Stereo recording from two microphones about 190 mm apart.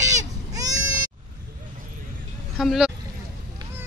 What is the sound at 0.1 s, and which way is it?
Goat, 20° right (ahead or behind).